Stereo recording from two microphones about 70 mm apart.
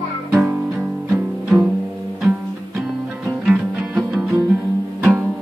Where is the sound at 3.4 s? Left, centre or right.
Right.